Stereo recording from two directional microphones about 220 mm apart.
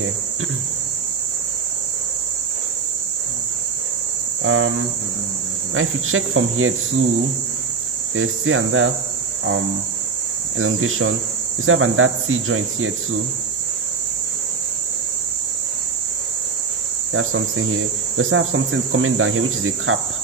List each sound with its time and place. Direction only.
4.4 s cricket: 65° right (ahead or behind)
5.8 s cricket: 70° right (ahead or behind)
8.1 s cricket: 65° right (ahead or behind)
10.6 s cricket: 70° right (ahead or behind)
17.1 s cricket: 65° right (ahead or behind)